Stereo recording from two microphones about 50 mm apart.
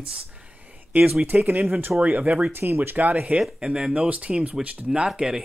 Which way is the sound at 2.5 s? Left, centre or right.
Right.